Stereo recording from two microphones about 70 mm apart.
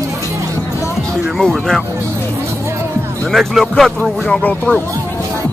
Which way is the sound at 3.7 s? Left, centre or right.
Centre.